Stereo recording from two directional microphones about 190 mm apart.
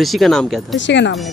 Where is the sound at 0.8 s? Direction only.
70° left (ahead or behind).